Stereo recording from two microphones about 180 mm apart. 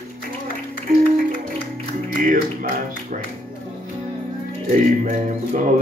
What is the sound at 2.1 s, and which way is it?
Speech, 50° right (ahead or behind).